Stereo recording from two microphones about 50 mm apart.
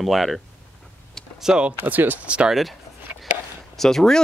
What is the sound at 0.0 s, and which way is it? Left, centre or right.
Speech, centre.